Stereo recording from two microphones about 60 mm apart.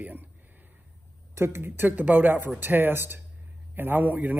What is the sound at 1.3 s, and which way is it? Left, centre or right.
A man's voice, right.